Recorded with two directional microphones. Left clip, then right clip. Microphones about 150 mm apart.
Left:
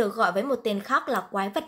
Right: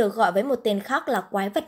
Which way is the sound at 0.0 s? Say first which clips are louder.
Right 3 dB; 25° right (ahead or behind).